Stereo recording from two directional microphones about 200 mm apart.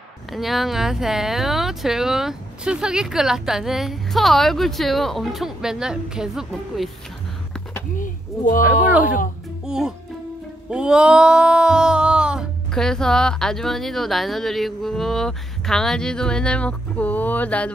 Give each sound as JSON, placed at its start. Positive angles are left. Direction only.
{"t": 0.3, "sound": "music", "side_deg": 0}
{"t": 7.9, "sound": "speech", "side_deg": 40}
{"t": 9.7, "sound": "music", "side_deg": -5}